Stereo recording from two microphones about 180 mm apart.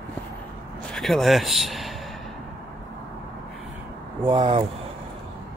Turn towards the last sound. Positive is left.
turn(degrees=-30)  # may be behind; listen again after turning